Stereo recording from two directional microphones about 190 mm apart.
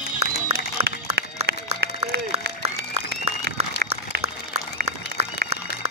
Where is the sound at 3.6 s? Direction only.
35° right (ahead or behind).